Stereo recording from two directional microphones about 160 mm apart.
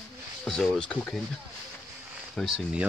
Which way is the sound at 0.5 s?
5° left (ahead or behind).